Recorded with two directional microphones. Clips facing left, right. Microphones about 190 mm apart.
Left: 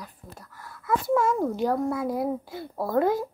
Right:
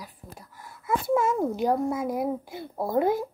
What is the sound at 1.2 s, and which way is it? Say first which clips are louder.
A child's voice: even; 20° right (ahead or behind).